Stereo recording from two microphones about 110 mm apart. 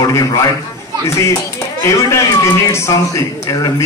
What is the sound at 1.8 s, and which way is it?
A man's voice, 25° left (ahead or behind).